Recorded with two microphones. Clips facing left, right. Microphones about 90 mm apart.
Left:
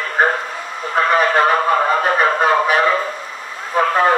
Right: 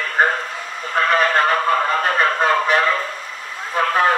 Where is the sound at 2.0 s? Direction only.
10° left (ahead or behind).